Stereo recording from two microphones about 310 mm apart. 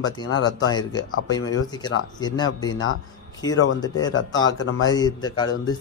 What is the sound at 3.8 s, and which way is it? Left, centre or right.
Speech, centre.